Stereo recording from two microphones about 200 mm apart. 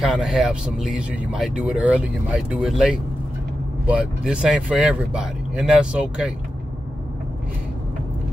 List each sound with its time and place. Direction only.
0.0 s speech: 5° right (ahead or behind)